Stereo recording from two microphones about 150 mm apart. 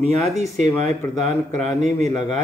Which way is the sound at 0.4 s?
50° right (ahead or behind).